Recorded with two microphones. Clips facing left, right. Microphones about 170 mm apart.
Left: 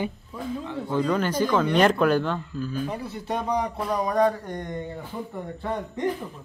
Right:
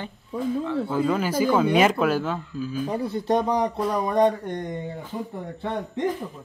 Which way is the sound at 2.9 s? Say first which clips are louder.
Right 6 dB; 30° right (ahead or behind).